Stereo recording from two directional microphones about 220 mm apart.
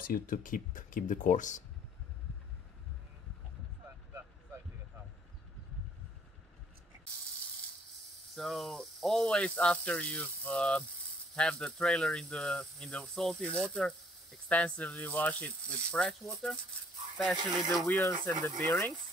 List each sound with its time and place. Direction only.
0.0 s speech: 40° left (ahead or behind)
8.4 s speech: centre (ahead or behind)
17.4 s speech: 20° right (ahead or behind)
17.7 s speech: 5° left (ahead or behind)